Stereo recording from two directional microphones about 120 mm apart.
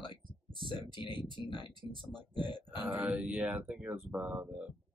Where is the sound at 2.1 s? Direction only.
40° left (ahead or behind).